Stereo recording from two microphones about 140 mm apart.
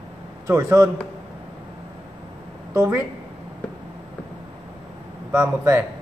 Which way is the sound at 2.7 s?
20° right (ahead or behind).